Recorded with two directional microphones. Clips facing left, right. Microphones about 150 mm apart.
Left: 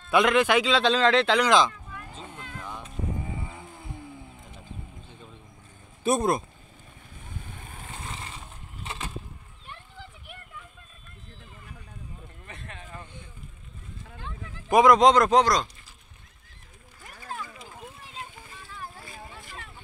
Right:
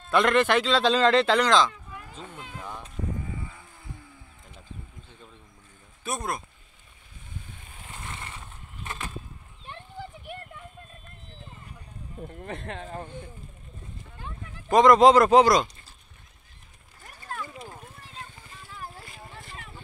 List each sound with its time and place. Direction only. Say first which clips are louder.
0.1 s a man's voice: even; 5° left (ahead or behind)
2.3 s music: right 1 dB; 15° right (ahead or behind)
3.2 s vehicle: left 1 dB; 25° left (ahead or behind)
6.0 s speech: left 8 dB; 25° left (ahead or behind)
12.2 s speech: right 9 dB; 50° right (ahead or behind)
14.7 s speech: right 1 dB; 5° left (ahead or behind)
15.0 s a man's voice: right 2 dB; 5° right (ahead or behind)